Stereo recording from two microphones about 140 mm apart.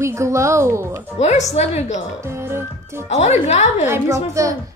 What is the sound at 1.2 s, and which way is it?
Speech, 55° left (ahead or behind).